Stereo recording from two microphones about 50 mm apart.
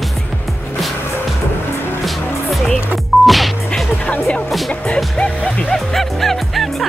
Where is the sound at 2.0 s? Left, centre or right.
Centre.